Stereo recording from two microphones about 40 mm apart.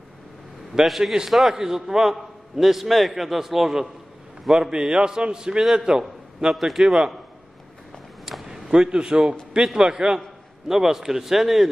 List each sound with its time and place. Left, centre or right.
0.8 s a man's voice: centre
4.5 s a man's voice: centre
5.6 s a man's voice: centre
6.5 s a man's voice: centre
6.8 s a man's voice: centre
8.3 s a sound: centre
8.7 s a man's voice: right